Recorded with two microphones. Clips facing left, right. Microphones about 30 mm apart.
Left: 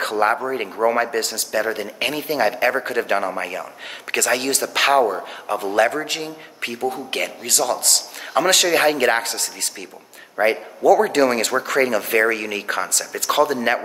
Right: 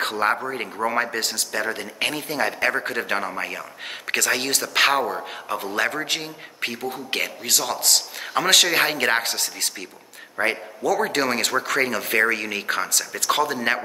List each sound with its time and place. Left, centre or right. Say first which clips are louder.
0.5 s speech: left 6 dB; centre
2.2 s speech: left 8 dB; centre
2.6 s a man's voice: left 3 dB; centre
11.5 s speech: left 2 dB; centre
11.8 s speech: left 4 dB; centre